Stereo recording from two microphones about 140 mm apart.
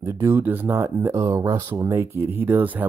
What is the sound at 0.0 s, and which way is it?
Speech, 15° right (ahead or behind).